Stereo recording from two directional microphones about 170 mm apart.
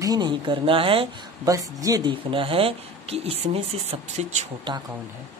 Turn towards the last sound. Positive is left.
turn(degrees=-40)  # may be behind; listen again after turning